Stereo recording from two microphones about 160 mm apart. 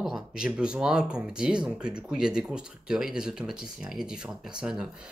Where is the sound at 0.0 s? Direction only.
5° right (ahead or behind).